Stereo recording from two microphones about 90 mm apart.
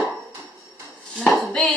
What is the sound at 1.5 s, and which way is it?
Hands, 10° left (ahead or behind).